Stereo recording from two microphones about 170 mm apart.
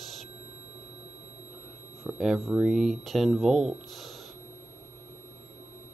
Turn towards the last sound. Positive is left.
turn(degrees=0)  # may be behind; listen again after turning